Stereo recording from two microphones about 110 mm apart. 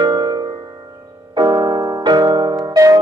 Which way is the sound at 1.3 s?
40° right (ahead or behind).